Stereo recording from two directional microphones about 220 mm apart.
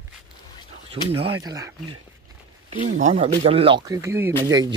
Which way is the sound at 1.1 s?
20° right (ahead or behind).